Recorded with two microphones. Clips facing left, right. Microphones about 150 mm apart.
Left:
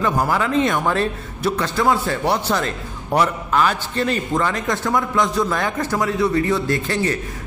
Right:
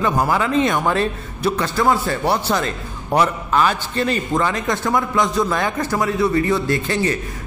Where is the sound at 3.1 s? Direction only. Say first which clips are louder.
Right 1 dB; 20° right (ahead or behind).